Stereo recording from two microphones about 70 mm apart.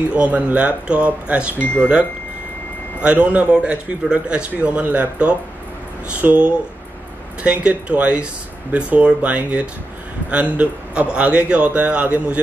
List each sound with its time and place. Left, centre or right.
0.1 s a man's voice: right
1.6 s speech: left
3.0 s a man's voice: centre